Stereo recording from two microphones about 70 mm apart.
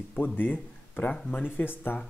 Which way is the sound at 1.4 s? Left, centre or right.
Left.